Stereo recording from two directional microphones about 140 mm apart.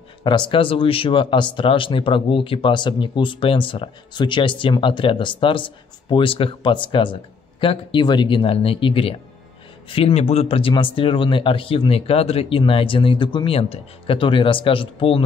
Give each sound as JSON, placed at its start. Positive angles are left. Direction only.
{"t": 0.2, "sound": "speech", "side_deg": 35}